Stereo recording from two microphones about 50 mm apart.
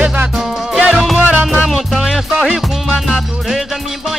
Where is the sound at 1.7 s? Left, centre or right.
Centre.